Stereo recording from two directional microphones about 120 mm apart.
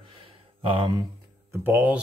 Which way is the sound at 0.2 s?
45° right (ahead or behind).